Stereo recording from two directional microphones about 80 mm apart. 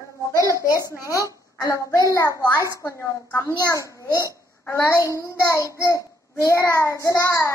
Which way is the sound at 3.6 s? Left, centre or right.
Left.